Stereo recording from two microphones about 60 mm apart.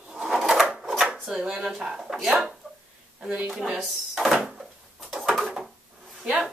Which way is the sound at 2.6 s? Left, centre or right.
Centre.